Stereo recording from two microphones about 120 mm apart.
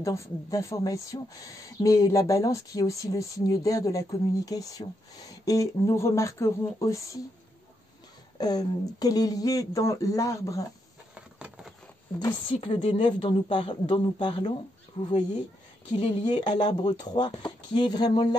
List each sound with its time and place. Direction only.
0.0 s speech: 25° left (ahead or behind)
8.4 s speech: 35° left (ahead or behind)
11.3 s a sound: 10° right (ahead or behind)
12.5 s a woman's voice: 50° left (ahead or behind)
16.2 s speech: 40° left (ahead or behind)